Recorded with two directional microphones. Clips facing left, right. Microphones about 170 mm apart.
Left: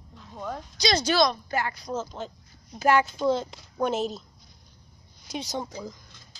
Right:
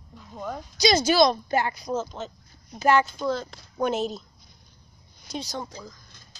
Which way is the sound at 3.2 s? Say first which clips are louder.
Left 3 dB; 20° left (ahead or behind).